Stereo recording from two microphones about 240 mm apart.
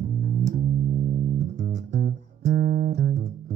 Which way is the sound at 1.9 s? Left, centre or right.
Right.